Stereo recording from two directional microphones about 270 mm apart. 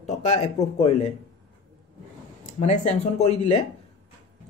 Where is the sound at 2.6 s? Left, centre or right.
Left.